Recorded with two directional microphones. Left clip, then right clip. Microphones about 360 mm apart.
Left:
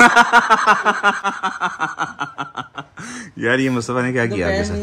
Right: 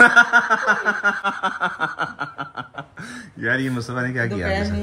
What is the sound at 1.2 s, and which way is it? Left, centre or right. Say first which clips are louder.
Snicker: left 1 dB; centre.